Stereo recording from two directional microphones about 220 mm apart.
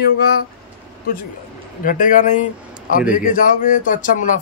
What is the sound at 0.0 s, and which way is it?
Speech, 45° left (ahead or behind).